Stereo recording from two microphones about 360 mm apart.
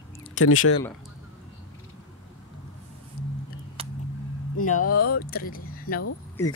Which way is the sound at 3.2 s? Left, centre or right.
Left.